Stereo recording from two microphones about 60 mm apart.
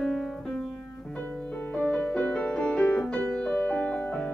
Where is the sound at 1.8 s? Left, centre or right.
Left.